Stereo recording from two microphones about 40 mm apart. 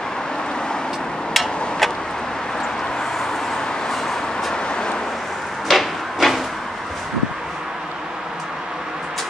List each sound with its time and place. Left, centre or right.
1.3 s tick-tock: centre
3.9 s vehicle: centre
4.6 s vehicle: left
5.7 s wood: centre